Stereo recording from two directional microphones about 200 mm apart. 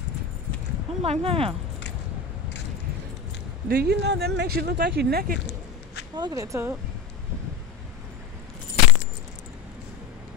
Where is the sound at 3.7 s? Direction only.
55° right (ahead or behind).